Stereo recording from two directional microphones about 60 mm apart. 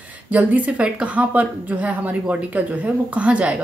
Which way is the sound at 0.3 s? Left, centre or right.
Right.